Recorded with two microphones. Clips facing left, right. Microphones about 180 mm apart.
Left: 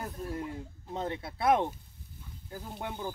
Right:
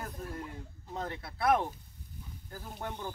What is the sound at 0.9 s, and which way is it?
Speech, 25° left (ahead or behind).